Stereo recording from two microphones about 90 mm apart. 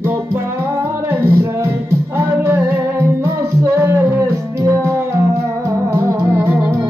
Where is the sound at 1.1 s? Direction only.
25° right (ahead or behind).